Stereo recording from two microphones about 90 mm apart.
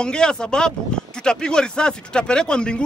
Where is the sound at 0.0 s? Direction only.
10° left (ahead or behind).